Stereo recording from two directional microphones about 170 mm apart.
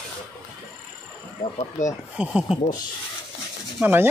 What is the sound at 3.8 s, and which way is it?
Speech, 10° right (ahead or behind).